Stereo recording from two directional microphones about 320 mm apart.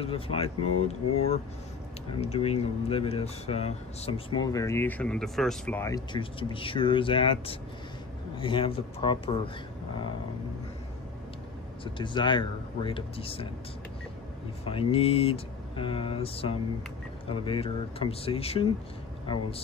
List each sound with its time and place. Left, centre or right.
0.0 s speech: centre
11.8 s speech: centre
14.6 s speech: centre